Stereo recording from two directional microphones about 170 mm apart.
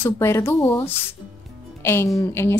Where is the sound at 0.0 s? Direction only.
15° left (ahead or behind).